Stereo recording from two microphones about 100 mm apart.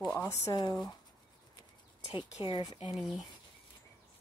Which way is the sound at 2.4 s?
45° left (ahead or behind).